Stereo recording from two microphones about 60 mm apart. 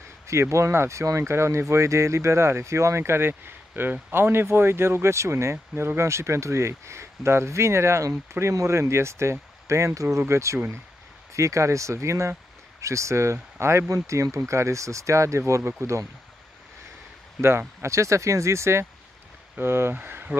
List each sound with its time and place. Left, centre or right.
0.3 s speech: right
17.4 s speech: right
20.0 s speech: right